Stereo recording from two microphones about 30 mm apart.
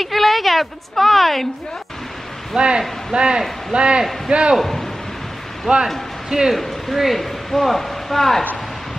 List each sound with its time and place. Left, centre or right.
0.0 s a woman's voice: centre
2.5 s a man's voice: right
4.6 s a man's voice: centre
5.7 s speech: centre
6.3 s speech: right
7.2 s speech: centre